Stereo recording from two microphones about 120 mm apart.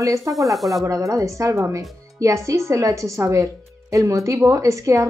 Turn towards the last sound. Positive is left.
turn(degrees=-25)  # may be behind; listen again after turning